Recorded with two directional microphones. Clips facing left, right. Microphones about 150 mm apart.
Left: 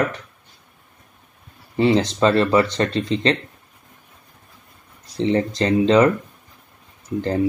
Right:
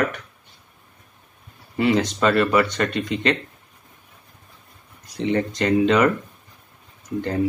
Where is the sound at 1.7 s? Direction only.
30° left (ahead or behind).